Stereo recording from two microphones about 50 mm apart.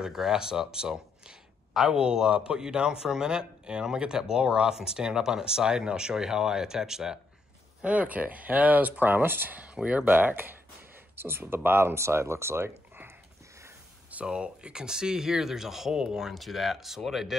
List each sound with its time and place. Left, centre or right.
0.0 s speech: centre
7.8 s speech: right
9.8 s speech: right
10.0 s speech: right
11.1 s speech: right
14.2 s speech: centre